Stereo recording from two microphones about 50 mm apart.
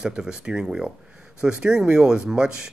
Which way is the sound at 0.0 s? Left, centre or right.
Centre.